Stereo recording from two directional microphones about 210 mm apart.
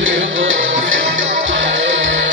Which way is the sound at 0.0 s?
65° right (ahead or behind).